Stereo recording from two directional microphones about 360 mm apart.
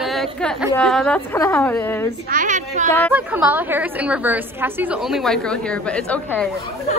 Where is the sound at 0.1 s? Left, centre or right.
Centre.